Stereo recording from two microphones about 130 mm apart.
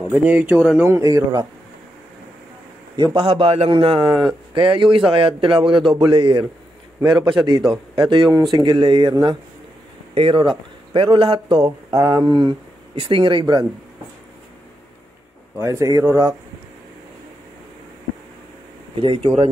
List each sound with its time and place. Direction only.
0.1 s speech: 15° right (ahead or behind)
3.0 s a man's voice: 35° right (ahead or behind)
10.1 s speech: 40° right (ahead or behind)
11.9 s speech: 30° right (ahead or behind)
15.6 s speech: 25° right (ahead or behind)
18.9 s speech: 45° right (ahead or behind)